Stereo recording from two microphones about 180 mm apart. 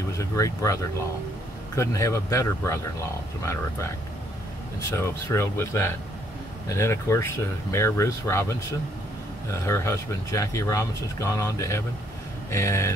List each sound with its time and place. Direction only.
0.2 s speech: 15° left (ahead or behind)
1.8 s speech: 15° left (ahead or behind)
4.9 s speech: 15° left (ahead or behind)